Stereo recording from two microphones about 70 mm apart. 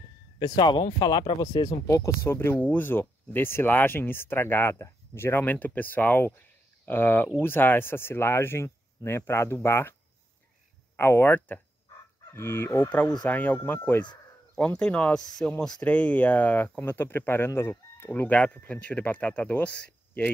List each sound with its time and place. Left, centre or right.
0.4 s speech: left
2.0 s speech: left
11.0 s speech: left
12.3 s speech: left
13.3 s speech: left
14.5 s speech: centre
15.1 s speech: centre
15.9 s speech: left